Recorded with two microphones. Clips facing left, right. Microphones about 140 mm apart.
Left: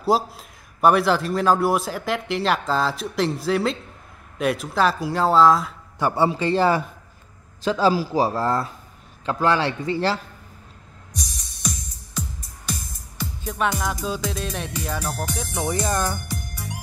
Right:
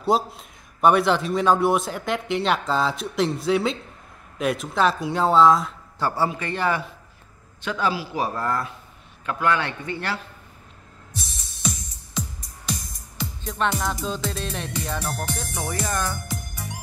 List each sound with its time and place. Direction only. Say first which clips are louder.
0.0 s a man's voice: left 1 dB; 5° left (ahead or behind)
5.9 s a man's voice: left 3 dB; 20° left (ahead or behind)
13.2 s music: left 1 dB; 5° left (ahead or behind)
15.9 s speech: left 3 dB; 35° left (ahead or behind)